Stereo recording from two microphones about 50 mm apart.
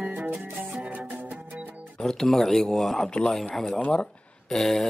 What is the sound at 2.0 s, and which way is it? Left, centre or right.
A man's voice, centre.